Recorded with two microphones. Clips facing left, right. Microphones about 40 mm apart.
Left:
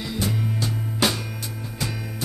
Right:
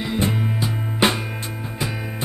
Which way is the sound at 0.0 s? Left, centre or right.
Right.